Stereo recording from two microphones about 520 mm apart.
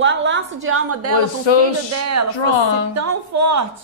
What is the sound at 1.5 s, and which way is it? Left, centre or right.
Speech, left.